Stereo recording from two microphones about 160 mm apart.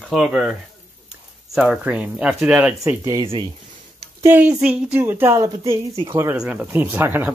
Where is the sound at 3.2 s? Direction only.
30° right (ahead or behind).